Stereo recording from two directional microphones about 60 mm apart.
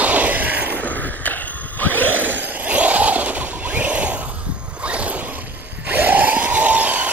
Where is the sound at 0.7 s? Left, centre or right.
Left.